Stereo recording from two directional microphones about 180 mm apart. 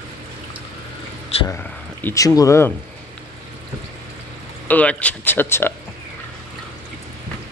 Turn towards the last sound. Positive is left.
turn(degrees=10)  # may be behind; listen again after turning